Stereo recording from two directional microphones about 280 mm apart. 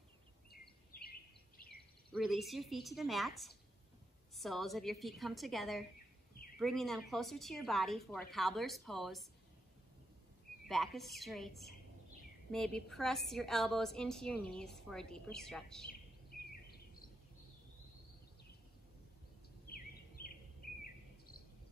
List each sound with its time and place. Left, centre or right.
0.9 s a sound: left
2.1 s a woman's voice: centre
10.7 s a woman's voice: centre
15.9 s bird vocalization: left